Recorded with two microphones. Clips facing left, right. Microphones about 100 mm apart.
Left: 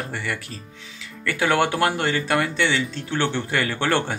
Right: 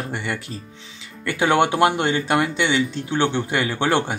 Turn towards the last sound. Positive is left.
turn(degrees=-15)  # may be behind; listen again after turning